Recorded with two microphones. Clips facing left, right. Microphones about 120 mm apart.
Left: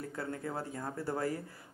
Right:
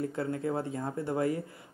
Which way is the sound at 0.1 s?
25° right (ahead or behind).